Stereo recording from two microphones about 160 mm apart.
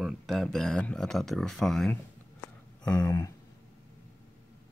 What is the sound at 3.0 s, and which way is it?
Speech, 20° left (ahead or behind).